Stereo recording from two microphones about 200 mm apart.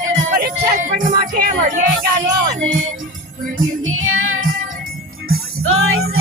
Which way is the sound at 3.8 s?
90° right.